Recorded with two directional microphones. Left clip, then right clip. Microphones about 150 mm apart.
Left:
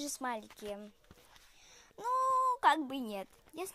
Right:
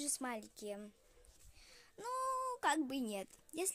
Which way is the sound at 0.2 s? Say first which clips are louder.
Left 6 dB; 15° right (ahead or behind).